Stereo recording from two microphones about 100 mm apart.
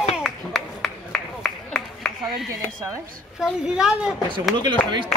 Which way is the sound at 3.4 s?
5° right (ahead or behind).